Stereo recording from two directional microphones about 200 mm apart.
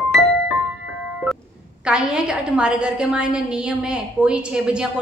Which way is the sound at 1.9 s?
5° right (ahead or behind).